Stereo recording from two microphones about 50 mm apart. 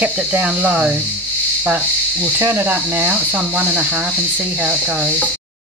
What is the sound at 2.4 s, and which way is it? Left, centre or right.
Speech, right.